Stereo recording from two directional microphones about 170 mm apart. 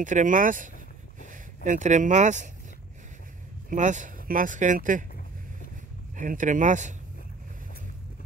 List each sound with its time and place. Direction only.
0.0 s speech: 50° right (ahead or behind)
3.7 s speech: 45° right (ahead or behind)
6.1 s speech: 50° right (ahead or behind)